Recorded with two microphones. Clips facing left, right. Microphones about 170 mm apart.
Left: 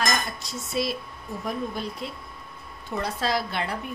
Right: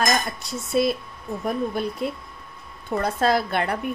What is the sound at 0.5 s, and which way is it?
A woman's voice, 55° right (ahead or behind).